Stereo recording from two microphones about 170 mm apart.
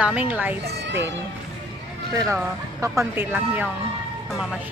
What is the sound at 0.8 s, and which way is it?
Speech, 90° right.